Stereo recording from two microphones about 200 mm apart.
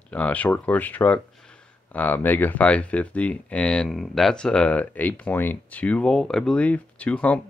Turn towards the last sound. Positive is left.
turn(degrees=5)  # may be behind; listen again after turning